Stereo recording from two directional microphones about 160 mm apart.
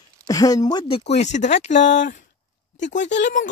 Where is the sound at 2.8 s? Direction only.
50° left (ahead or behind).